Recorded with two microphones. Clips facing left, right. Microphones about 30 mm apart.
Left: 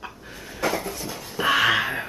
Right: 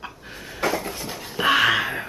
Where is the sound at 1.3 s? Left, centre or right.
Centre.